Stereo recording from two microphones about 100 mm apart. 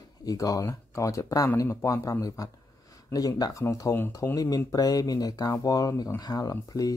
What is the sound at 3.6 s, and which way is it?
Speech, 25° left (ahead or behind).